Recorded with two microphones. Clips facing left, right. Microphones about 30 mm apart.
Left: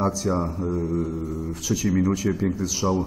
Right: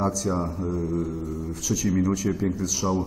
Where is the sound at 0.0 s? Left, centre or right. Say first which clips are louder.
Left 2 dB; centre.